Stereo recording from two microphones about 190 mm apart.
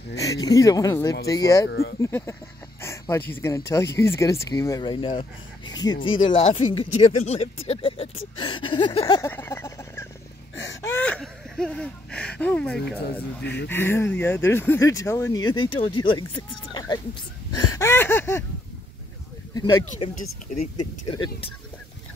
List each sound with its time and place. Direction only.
0.1 s speech: 15° left (ahead or behind)
1.7 s speech: 60° left (ahead or behind)
2.0 s speech: 15° left (ahead or behind)
9.2 s fowl: 10° left (ahead or behind)
10.8 s a sound: 10° left (ahead or behind)
13.4 s speech: 65° left (ahead or behind)
13.7 s speech: 10° left (ahead or behind)
19.5 s speech: 20° left (ahead or behind)
21.1 s speech: 25° left (ahead or behind)